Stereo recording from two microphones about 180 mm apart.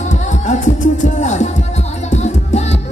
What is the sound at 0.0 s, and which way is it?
Music, 40° left (ahead or behind).